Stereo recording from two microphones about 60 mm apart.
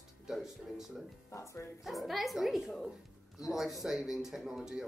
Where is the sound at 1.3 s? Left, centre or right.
Left.